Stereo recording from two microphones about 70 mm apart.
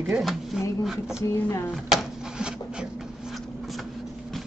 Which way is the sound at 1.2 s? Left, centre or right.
Left.